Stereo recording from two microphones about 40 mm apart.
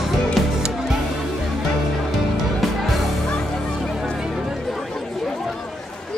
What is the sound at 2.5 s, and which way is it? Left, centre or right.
Music, centre.